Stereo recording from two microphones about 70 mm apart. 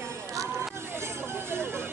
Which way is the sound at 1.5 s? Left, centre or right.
Right.